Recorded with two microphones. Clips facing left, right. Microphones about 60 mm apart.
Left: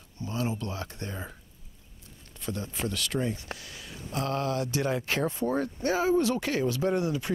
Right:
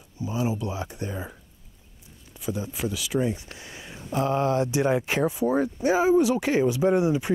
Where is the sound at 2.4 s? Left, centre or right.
Centre.